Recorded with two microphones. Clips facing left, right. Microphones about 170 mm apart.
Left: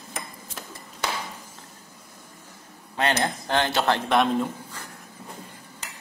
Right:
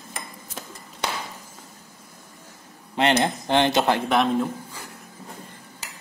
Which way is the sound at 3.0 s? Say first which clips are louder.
Right 4 dB; 25° right (ahead or behind).